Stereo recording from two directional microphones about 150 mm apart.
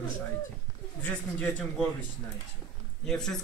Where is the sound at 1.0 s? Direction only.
10° left (ahead or behind).